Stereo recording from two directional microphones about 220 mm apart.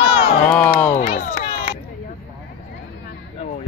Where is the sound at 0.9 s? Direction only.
30° left (ahead or behind).